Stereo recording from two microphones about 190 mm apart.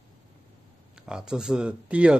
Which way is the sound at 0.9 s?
5° right (ahead or behind).